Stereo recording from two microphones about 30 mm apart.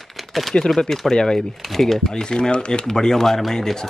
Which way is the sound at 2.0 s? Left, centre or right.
Left.